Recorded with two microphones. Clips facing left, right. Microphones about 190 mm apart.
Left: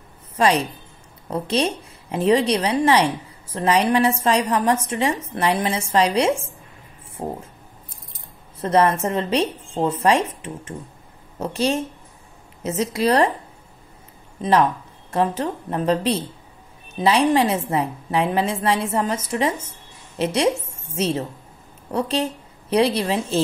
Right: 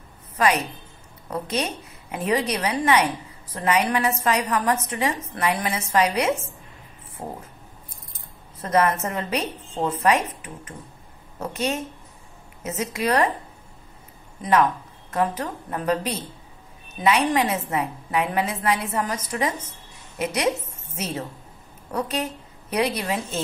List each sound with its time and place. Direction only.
0.4 s a woman's voice: 30° left (ahead or behind)
8.5 s a woman's voice: 30° left (ahead or behind)
14.4 s a woman's voice: 25° left (ahead or behind)